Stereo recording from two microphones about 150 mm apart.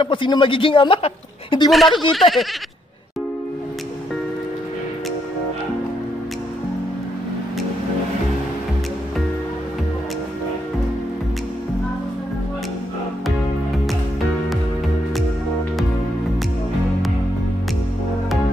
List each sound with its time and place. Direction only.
0.0 s speech: 35° left (ahead or behind)
1.7 s speech: centre (ahead or behind)